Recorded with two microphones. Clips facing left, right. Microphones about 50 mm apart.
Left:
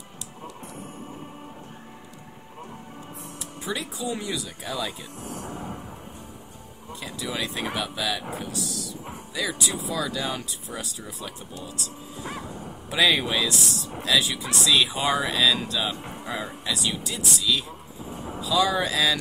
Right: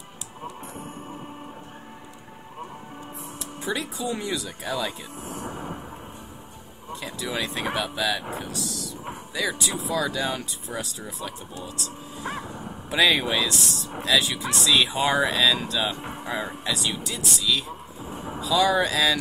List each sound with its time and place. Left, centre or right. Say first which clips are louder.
3.6 s speech: right 2 dB; centre
5.2 s a sound: right 1 dB; right
6.9 s speech: right 2 dB; centre
12.3 s a sound: right 3 dB; centre
13.0 s speech: right 1 dB; centre
16.0 s speech: right 2 dB; right
16.6 s speech: right 1 dB; centre
18.1 s vehicle: right 1 dB; right
18.4 s speech: right 2 dB; centre